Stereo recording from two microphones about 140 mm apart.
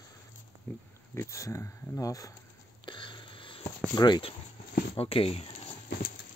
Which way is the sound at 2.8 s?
35° left (ahead or behind).